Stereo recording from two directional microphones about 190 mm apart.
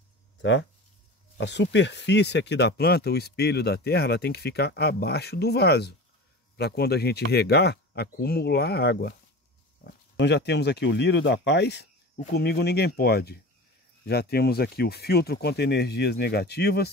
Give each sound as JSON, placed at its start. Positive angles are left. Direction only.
{"t": 0.4, "sound": "speech", "side_deg": 70}